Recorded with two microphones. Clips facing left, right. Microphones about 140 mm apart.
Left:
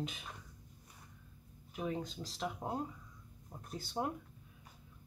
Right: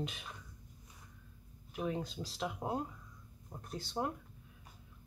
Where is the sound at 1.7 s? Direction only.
Centre (ahead or behind).